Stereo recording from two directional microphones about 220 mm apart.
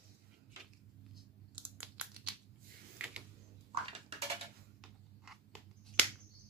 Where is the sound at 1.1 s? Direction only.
5° right (ahead or behind).